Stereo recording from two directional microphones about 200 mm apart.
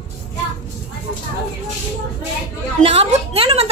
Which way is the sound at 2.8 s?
30° right (ahead or behind).